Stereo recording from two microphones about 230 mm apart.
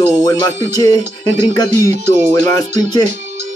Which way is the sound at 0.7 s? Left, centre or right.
Centre.